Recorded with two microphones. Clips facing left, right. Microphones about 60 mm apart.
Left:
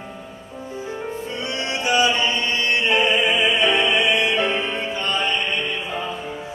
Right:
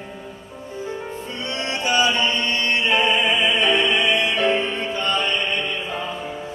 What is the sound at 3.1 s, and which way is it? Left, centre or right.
Music, centre.